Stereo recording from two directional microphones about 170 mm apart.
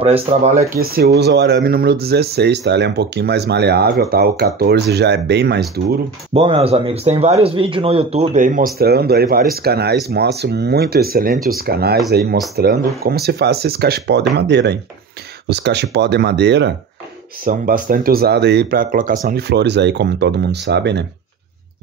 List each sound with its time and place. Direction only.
0.0 s speech: 35° right (ahead or behind)
0.7 s speech: 65° right (ahead or behind)
6.3 s speech: 35° right (ahead or behind); by 16.7 s 90° right
17.5 s speech: 55° right (ahead or behind); by 21.0 s 85° right